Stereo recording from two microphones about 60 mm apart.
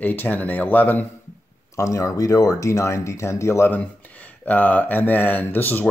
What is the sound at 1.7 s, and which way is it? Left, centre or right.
Speech, left.